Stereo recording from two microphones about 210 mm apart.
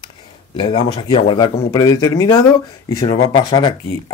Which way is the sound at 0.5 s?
20° left (ahead or behind).